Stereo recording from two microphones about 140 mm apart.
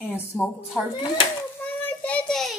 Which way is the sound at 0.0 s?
15° left (ahead or behind).